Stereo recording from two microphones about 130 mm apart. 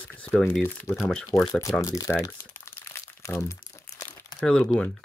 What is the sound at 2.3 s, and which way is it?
Crumpling, 20° left (ahead or behind).